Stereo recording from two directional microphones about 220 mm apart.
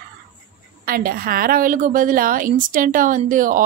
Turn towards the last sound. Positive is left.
turn(degrees=-35)  # may be behind; listen again after turning